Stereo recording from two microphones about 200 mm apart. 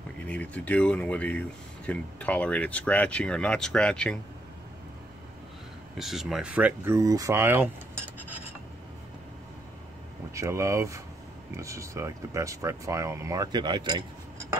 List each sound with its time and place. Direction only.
0.3 s speech: 5° left (ahead or behind)
5.9 s speech: centre (ahead or behind)
10.3 s speech: 15° right (ahead or behind)